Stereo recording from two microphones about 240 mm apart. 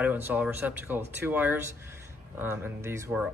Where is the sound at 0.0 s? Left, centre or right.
Centre.